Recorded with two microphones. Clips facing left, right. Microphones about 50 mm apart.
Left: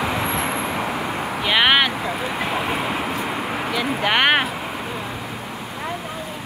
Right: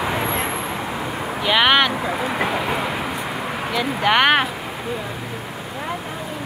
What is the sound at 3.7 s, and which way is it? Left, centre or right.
Speech, centre.